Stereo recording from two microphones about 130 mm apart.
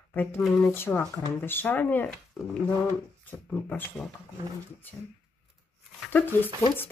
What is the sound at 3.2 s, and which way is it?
Speech, 15° left (ahead or behind).